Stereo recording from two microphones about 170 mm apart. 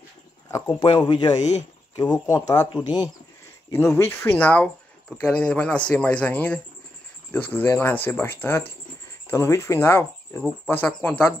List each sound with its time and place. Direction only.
0.5 s speech: 20° left (ahead or behind)